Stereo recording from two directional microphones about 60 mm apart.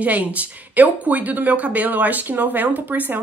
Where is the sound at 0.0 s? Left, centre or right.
Right.